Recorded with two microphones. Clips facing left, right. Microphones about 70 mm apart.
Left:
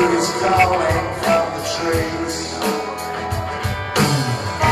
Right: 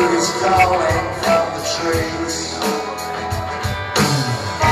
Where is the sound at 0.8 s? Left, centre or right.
Left.